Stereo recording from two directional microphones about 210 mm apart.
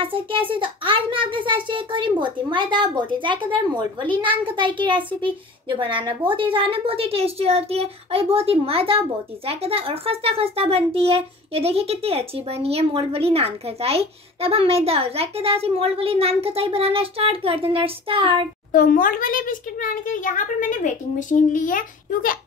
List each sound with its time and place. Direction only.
0.0 s a child's voice: 25° right (ahead or behind)
18.7 s a child's voice: 40° left (ahead or behind)